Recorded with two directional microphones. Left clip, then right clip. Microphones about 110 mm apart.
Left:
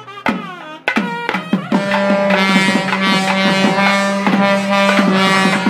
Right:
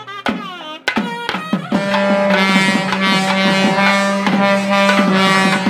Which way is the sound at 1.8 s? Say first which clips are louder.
Even; centre (ahead or behind).